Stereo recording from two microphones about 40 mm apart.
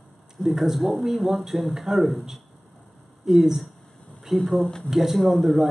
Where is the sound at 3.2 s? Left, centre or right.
Centre.